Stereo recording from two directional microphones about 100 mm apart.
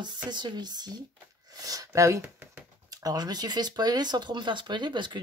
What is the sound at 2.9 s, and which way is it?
Speech, 35° right (ahead or behind).